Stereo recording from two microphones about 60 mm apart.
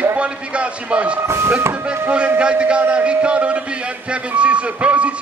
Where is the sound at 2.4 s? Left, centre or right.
Centre.